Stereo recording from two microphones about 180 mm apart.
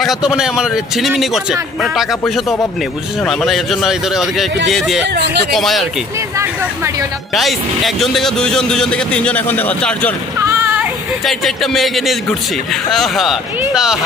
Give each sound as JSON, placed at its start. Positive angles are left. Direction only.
{"t": 0.0, "sound": "speech", "side_deg": 0}
{"t": 5.0, "sound": "speech", "side_deg": -70}
{"t": 5.5, "sound": "speech", "side_deg": 0}
{"t": 6.3, "sound": "speech", "side_deg": -15}
{"t": 7.3, "sound": "speech", "side_deg": 0}
{"t": 10.5, "sound": "child singing", "side_deg": -10}
{"t": 11.2, "sound": "speech", "side_deg": 0}